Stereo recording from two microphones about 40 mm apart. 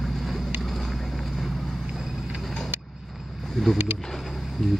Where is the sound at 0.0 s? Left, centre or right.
Centre.